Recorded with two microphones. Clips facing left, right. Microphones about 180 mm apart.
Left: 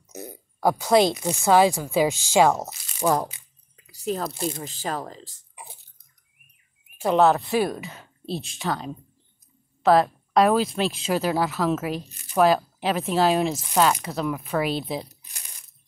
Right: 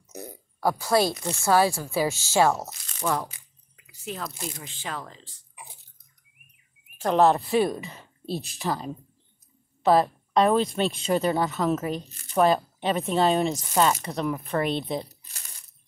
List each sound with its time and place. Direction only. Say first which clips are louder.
0.6 s speech: left 4 dB; 20° left (ahead or behind)
2.7 s speech: left 1 dB; 5° left (ahead or behind)
3.0 s speech: left 5 dB; 40° left (ahead or behind)
3.3 s squish: left 4 dB; 25° left (ahead or behind)
3.8 s speech: left 7 dB; 35° left (ahead or behind)
7.0 s speech: left 1 dB; 5° left (ahead or behind)